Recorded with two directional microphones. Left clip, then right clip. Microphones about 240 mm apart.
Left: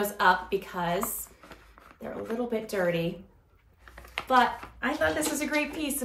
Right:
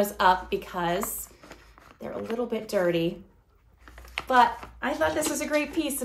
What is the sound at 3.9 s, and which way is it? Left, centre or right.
Computer keyboard, centre.